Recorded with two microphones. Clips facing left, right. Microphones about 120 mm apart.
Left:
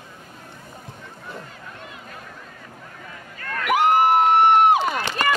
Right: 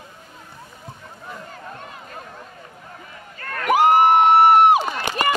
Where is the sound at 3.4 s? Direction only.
40° right (ahead or behind).